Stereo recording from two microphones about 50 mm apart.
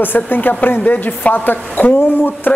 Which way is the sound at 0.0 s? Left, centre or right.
Left.